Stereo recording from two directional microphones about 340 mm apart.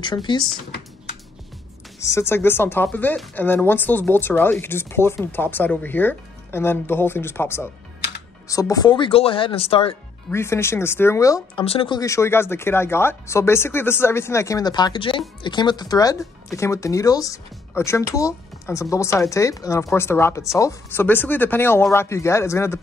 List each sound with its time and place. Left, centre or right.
0.0 s speech: centre
2.0 s speech: centre